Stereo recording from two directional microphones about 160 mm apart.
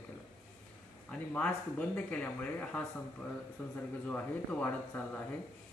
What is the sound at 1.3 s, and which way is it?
Speech, 10° left (ahead or behind).